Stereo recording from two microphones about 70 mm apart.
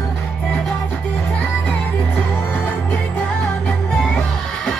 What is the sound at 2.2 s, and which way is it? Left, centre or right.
Music, left.